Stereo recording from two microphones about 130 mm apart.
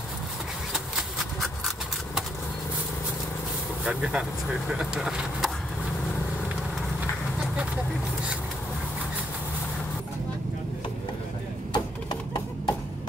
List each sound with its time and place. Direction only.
3.8 s speech: 10° right (ahead or behind)
11.7 s music: 35° left (ahead or behind)